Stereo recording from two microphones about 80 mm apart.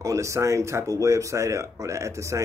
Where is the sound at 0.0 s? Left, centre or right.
Right.